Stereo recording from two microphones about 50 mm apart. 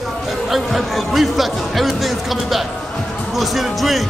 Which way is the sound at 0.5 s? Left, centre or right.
Centre.